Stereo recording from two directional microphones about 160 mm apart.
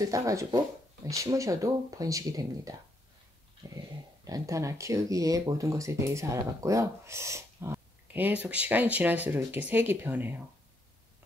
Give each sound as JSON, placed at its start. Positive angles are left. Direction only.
{"t": 0.0, "sound": "speech", "side_deg": -20}
{"t": 3.6, "sound": "dog", "side_deg": -25}
{"t": 4.2, "sound": "speech", "side_deg": -20}